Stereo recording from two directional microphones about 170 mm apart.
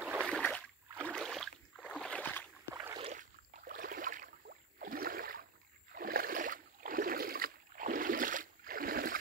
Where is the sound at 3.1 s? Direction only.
50° right (ahead or behind).